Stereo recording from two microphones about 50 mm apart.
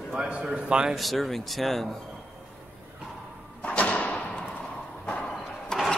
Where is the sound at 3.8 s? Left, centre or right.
Left.